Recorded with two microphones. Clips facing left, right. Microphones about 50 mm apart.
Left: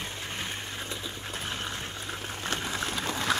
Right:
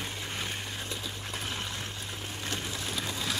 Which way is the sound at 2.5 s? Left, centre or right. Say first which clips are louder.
Left 4 dB; left.